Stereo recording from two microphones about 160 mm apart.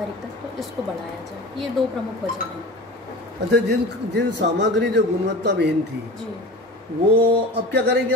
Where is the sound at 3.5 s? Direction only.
90° right.